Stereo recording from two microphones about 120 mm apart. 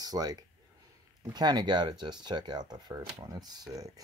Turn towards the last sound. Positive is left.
turn(degrees=-30)  # may be behind; listen again after turning